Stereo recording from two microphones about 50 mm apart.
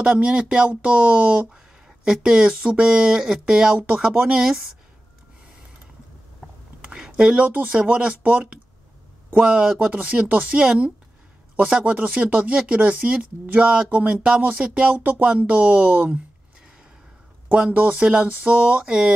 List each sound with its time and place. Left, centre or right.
0.0 s speech: centre
1.9 s speech: centre
6.8 s a sound: centre
7.4 s speech: right
9.8 s speech: right
10.6 s speech: centre
11.8 s speech: right
17.5 s speech: right
18.9 s speech: centre